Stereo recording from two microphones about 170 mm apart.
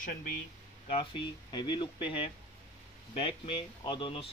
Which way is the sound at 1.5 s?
25° left (ahead or behind).